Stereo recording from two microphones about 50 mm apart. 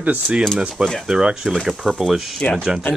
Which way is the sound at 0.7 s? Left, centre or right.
Centre.